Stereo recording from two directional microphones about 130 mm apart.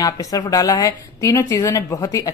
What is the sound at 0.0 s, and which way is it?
A woman's voice, 25° left (ahead or behind).